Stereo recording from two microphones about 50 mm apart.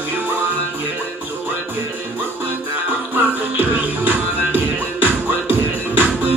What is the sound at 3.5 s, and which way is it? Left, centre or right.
Music, right.